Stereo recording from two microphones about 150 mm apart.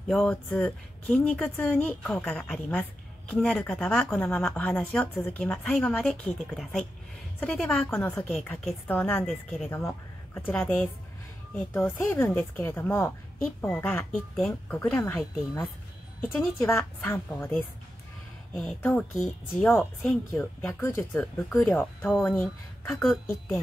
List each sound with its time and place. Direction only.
0.1 s speech: 5° left (ahead or behind)
9.7 s a woman's voice: 15° left (ahead or behind)
14.3 s speech: centre (ahead or behind)
14.8 s speech: 10° left (ahead or behind)
16.2 s speech: 15° left (ahead or behind)
18.5 s speech: 5° left (ahead or behind)